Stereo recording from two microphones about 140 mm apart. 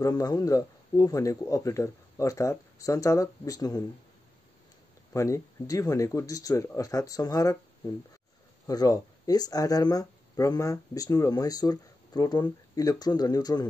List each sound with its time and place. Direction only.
0.0 s speech: 25° left (ahead or behind)
5.1 s speech: 25° left (ahead or behind)
8.6 s speech: 25° left (ahead or behind)